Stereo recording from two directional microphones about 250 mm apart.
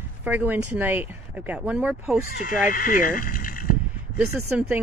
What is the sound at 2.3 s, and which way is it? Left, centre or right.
Speech, left.